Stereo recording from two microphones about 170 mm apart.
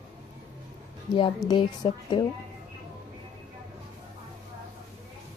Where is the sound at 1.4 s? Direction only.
25° left (ahead or behind).